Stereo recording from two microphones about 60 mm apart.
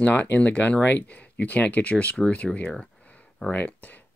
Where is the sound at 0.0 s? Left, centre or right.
Left.